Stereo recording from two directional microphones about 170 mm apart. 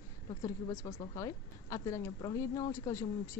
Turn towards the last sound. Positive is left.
turn(degrees=20)  # may be behind; listen again after turning